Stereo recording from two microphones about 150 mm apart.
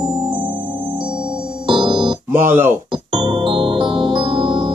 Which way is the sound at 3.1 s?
30° right (ahead or behind).